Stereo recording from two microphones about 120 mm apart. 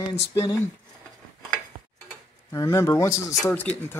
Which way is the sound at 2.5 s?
25° left (ahead or behind).